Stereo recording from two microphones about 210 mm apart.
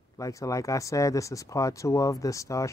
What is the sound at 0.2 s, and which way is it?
Speech, 15° left (ahead or behind).